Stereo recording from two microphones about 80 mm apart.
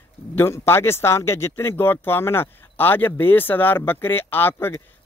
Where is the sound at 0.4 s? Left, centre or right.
Left.